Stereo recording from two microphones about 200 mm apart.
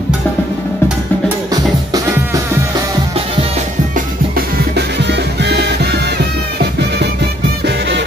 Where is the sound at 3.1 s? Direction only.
30° right (ahead or behind).